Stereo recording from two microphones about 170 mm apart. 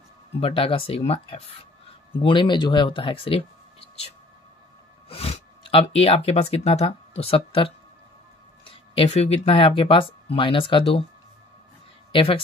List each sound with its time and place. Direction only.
0.4 s speech: 30° left (ahead or behind)
5.1 s speech: 35° left (ahead or behind)
12.1 s speech: 30° left (ahead or behind)